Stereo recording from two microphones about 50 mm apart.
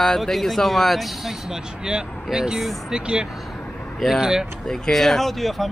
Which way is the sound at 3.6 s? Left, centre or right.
Left.